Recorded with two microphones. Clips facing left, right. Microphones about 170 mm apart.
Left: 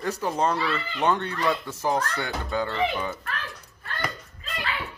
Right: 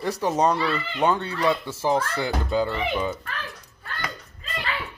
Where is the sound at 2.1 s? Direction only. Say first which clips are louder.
Right 4 dB; 25° right (ahead or behind).